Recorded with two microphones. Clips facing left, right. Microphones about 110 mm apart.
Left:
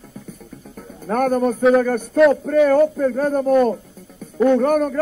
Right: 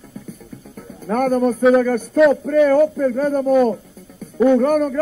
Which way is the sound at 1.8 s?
45° left (ahead or behind).